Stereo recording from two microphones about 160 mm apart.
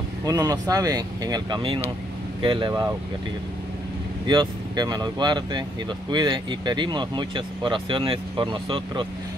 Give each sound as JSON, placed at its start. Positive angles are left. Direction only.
{"t": 0.2, "sound": "speech", "side_deg": -20}
{"t": 4.3, "sound": "speech", "side_deg": -25}